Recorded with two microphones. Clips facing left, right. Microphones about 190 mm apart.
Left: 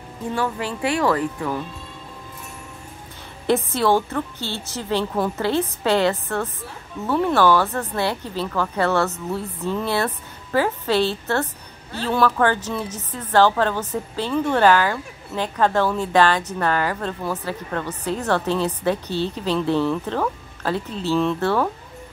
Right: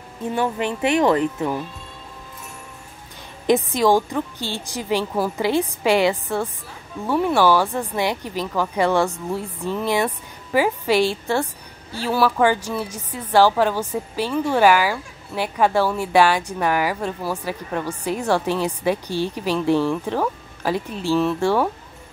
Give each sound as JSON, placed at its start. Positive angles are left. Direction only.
{"t": 0.3, "sound": "speech", "side_deg": -20}
{"t": 3.4, "sound": "a woman's voice", "side_deg": -15}